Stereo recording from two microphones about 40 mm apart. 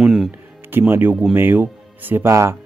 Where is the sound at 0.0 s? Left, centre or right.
Centre.